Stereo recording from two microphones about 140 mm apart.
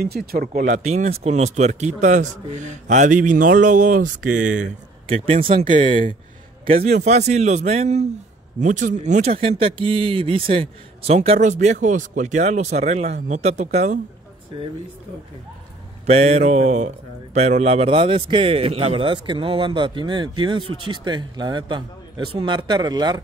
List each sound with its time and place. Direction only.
0.0 s speech: 90° right; by 4.6 s 65° right (ahead or behind)
5.0 s speech: 45° right (ahead or behind)
6.7 s speech: 55° right (ahead or behind)
8.5 s speech: 65° right (ahead or behind)
16.1 s speech: 50° right (ahead or behind); by 23.2 s 30° right (ahead or behind)